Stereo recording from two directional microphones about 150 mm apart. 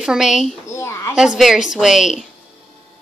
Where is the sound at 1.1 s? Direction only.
5° right (ahead or behind).